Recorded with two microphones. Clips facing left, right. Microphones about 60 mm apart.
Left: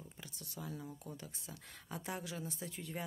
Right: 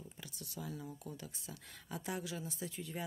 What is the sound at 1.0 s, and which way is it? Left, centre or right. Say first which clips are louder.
Speech: right 1 dB; left.